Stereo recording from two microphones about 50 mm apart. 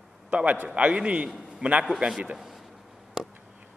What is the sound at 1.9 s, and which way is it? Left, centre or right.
Speech, centre.